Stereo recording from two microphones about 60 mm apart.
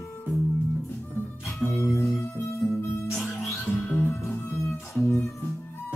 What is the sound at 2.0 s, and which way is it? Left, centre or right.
Music, left.